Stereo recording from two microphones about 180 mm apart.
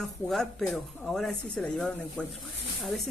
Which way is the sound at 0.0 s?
Centre (ahead or behind).